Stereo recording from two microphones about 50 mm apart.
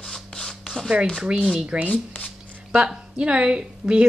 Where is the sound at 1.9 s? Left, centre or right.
Left.